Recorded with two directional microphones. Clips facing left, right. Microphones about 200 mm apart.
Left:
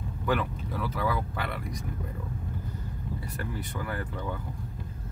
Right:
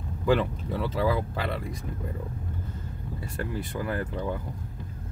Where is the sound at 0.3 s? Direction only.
30° right (ahead or behind).